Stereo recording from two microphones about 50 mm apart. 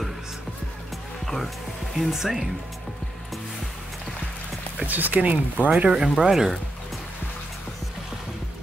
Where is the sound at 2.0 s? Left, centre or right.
Centre.